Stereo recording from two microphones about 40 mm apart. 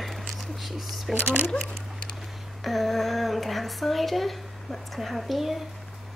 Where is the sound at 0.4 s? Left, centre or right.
Centre.